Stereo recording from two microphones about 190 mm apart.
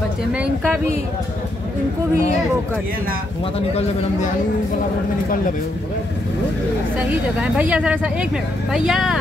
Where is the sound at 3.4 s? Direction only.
30° left (ahead or behind).